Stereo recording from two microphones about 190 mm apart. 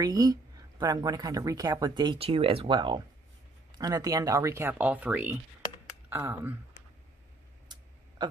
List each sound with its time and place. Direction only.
0.0 s speech: 20° right (ahead or behind)
8.2 s speech: 25° right (ahead or behind)